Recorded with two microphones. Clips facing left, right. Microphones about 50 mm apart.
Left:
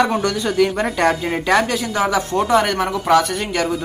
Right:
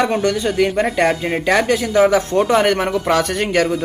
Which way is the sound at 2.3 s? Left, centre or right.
Right.